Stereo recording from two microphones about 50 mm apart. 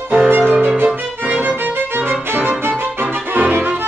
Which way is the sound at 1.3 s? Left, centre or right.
Right.